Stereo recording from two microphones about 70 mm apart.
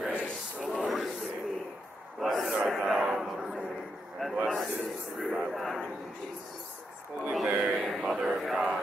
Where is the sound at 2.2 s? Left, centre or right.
Centre.